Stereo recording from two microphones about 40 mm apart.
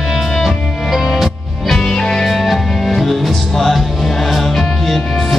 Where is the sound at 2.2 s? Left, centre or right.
Centre.